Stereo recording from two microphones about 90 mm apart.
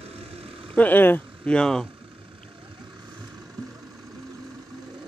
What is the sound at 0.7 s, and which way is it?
Speech, 20° left (ahead or behind).